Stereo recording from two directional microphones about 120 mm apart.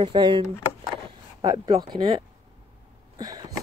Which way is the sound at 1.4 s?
35° right (ahead or behind).